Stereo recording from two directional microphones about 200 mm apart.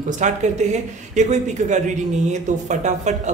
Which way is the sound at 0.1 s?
35° right (ahead or behind).